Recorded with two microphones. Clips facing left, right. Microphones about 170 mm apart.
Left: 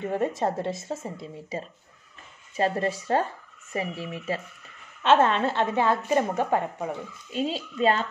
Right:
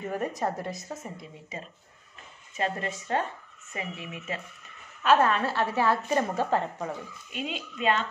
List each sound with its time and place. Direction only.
0.0 s a woman's voice: 25° left (ahead or behind)
2.5 s a woman's voice: 35° left (ahead or behind); by 7.0 s 15° left (ahead or behind)
7.2 s speech: 30° left (ahead or behind)